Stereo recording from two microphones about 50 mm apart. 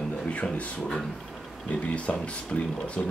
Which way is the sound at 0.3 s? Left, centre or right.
Left.